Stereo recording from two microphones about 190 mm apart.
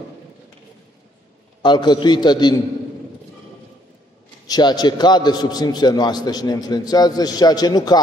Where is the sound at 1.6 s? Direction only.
25° left (ahead or behind).